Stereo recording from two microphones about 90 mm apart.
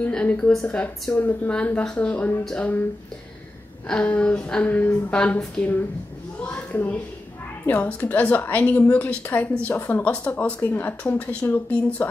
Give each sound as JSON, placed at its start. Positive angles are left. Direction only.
{"t": 0.0, "sound": "a sound", "side_deg": 15}
{"t": 0.7, "sound": "a woman's voice", "side_deg": 15}
{"t": 3.9, "sound": "a woman's voice", "side_deg": 15}